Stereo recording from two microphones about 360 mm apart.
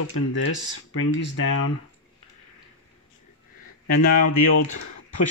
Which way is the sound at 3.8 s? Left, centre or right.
Left.